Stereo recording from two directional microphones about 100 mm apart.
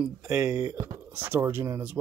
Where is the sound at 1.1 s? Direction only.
20° right (ahead or behind).